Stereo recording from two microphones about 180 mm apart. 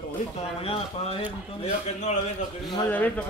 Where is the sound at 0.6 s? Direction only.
35° left (ahead or behind).